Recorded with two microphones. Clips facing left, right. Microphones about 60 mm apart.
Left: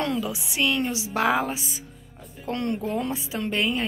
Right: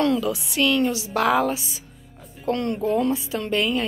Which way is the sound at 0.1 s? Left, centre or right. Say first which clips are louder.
Right 5 dB; centre.